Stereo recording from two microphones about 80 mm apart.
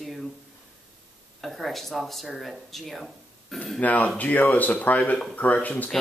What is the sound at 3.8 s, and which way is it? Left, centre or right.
Speech, centre.